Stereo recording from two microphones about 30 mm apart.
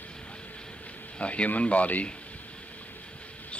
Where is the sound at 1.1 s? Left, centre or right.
Left.